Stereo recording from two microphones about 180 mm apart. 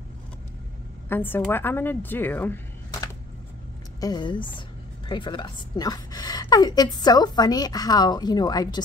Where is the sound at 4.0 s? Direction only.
20° left (ahead or behind).